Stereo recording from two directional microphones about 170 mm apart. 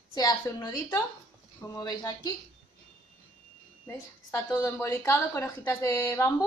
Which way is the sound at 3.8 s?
15° left (ahead or behind).